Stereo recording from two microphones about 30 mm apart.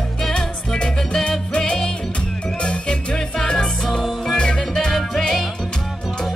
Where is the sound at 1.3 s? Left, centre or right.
Left.